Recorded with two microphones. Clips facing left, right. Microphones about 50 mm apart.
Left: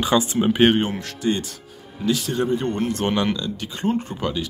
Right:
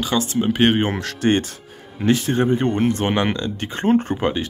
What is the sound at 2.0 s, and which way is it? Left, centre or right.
Speech, right.